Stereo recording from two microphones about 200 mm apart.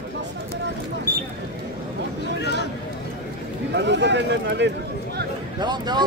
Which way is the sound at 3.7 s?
60° right (ahead or behind).